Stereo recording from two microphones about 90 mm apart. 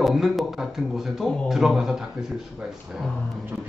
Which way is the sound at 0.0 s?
Centre (ahead or behind).